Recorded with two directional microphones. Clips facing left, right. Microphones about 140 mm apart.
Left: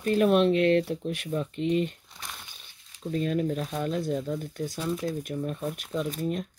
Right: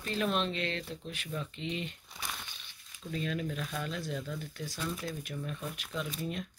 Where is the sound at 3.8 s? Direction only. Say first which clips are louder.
Left 9 dB; 45° left (ahead or behind).